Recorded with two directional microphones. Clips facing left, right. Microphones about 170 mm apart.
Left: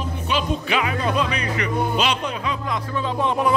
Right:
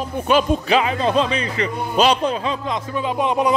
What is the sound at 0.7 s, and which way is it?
Speech, 30° right (ahead or behind).